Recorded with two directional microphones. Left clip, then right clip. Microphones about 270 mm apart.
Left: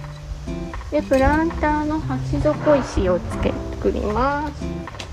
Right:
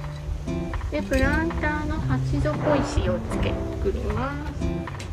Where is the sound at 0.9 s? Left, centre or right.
Centre.